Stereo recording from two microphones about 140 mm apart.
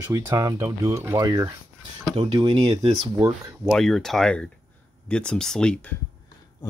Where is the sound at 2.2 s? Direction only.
40° right (ahead or behind).